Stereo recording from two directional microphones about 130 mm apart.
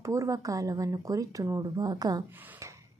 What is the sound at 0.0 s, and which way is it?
Speech, 25° right (ahead or behind).